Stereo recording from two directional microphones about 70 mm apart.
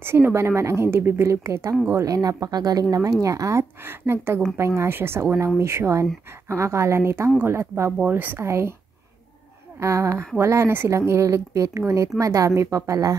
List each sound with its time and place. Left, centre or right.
0.0 s a woman's voice: right
3.8 s a woman's voice: right
8.0 s a woman's voice: right
8.4 s a woman's voice: right
9.8 s speech: right